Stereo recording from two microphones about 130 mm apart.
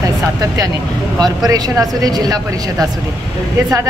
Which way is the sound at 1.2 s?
30° right (ahead or behind).